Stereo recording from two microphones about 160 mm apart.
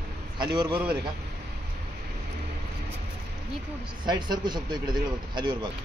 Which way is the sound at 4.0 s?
25° right (ahead or behind).